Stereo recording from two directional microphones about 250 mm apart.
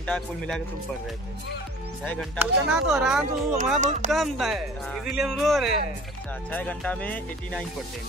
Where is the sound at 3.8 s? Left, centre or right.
Right.